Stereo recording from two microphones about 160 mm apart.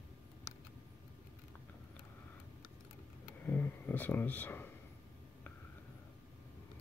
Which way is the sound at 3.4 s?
15° left (ahead or behind).